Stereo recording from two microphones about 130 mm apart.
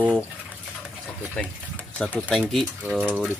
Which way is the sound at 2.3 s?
Centre (ahead or behind).